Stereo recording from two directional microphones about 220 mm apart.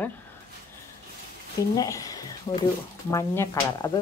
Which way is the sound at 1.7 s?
15° left (ahead or behind).